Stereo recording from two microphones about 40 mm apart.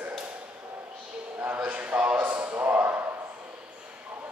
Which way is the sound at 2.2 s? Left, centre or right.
Right.